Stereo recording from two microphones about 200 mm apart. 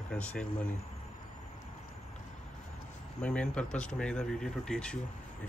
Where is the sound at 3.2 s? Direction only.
5° left (ahead or behind).